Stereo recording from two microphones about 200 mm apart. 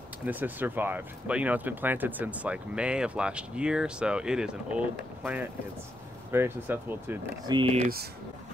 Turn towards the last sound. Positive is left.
turn(degrees=-25)  # may be behind; listen again after turning